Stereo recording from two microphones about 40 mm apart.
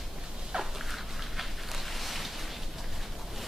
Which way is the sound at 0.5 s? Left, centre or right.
Right.